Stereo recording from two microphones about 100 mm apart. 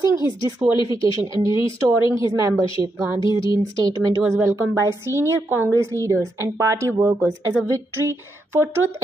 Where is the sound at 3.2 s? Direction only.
55° left (ahead or behind).